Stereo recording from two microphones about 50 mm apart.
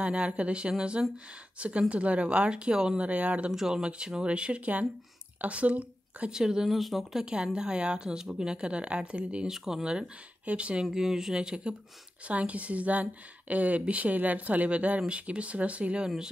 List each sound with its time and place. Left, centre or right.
0.0 s a woman's voice: right
3.0 s a woman's voice: right
3.5 s a woman's voice: centre; by 6.3 s right
6.3 s speech: centre
6.7 s speech: centre
7.2 s a woman's voice: centre
9.5 s speech: centre
10.4 s speech: right
12.3 s a woman's voice: right